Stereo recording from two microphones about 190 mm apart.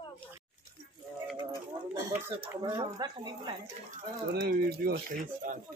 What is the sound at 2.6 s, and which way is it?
Speech, 20° right (ahead or behind).